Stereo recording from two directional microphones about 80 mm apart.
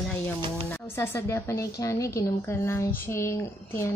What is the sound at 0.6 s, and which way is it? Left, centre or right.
Speech, left.